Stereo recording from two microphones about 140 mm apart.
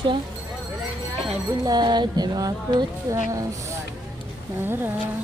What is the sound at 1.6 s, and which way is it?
Music, 30° right (ahead or behind).